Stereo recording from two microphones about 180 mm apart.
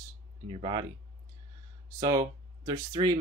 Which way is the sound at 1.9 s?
20° right (ahead or behind).